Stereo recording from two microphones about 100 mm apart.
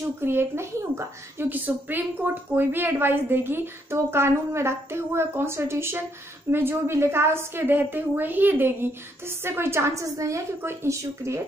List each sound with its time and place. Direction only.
0.2 s a woman's voice: 25° right (ahead or behind)